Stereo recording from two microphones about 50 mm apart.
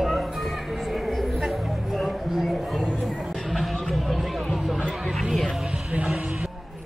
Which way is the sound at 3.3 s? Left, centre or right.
Centre.